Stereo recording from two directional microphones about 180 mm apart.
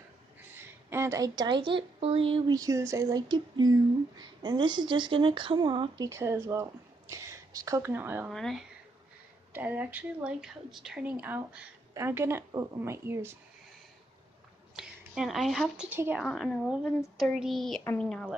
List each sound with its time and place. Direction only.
0.6 s speech: 15° right (ahead or behind)
8.3 s speech: centre (ahead or behind)
9.5 s a woman's voice: 10° right (ahead or behind)
14.8 s a woman's voice: centre (ahead or behind)
16.3 s speech: centre (ahead or behind)